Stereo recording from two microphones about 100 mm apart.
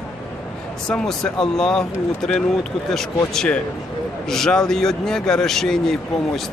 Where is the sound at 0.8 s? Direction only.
5° left (ahead or behind).